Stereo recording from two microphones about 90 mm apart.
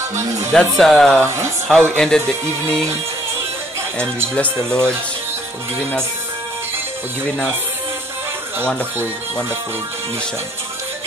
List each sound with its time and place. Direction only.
0.5 s speech: 5° left (ahead or behind)
1.2 s speech: 30° right (ahead or behind)
1.7 s speech: 5° left (ahead or behind)
4.4 s speech: 15° left (ahead or behind)